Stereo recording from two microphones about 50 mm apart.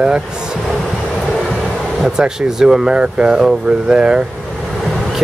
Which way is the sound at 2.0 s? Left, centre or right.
Centre.